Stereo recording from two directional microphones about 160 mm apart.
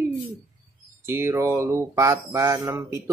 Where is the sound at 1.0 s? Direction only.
15° right (ahead or behind).